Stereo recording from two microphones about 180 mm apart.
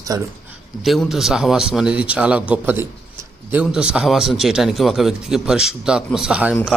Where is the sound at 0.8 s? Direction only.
Centre (ahead or behind).